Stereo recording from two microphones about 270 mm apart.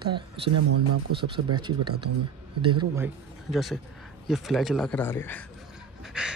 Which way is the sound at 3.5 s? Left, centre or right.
Centre.